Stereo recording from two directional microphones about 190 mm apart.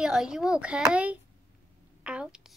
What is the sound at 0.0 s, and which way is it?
A child's voice, 5° right (ahead or behind).